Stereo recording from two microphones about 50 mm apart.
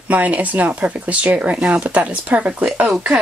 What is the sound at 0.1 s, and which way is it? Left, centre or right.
Speech, right.